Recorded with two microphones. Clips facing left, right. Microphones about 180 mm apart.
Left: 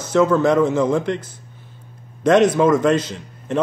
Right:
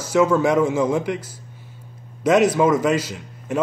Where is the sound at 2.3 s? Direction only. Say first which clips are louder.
Left 2 dB; 5° right (ahead or behind).